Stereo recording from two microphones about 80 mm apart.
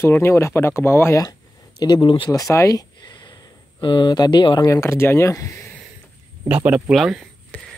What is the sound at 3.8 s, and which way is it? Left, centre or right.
Speech, left.